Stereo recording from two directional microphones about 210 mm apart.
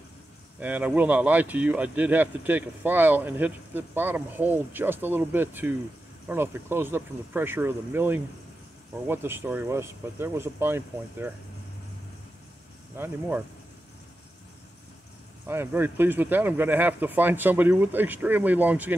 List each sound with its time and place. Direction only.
0.6 s speech: 5° right (ahead or behind)
12.9 s speech: 10° right (ahead or behind)
15.4 s speech: 10° right (ahead or behind)